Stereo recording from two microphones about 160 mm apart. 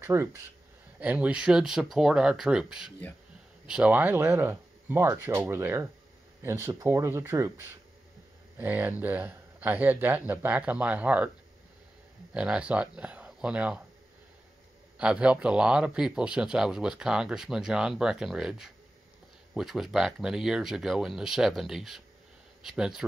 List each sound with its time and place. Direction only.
0.0 s speech: 15° right (ahead or behind)
12.4 s speech: 5° right (ahead or behind)
15.0 s speech: 5° right (ahead or behind)